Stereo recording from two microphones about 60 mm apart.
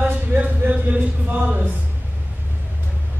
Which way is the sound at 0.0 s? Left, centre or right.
Right.